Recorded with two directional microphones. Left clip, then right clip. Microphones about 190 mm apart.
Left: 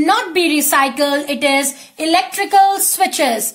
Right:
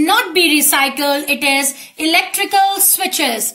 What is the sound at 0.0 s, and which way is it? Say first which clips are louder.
A woman's voice: right 1 dB; 50° left (ahead or behind).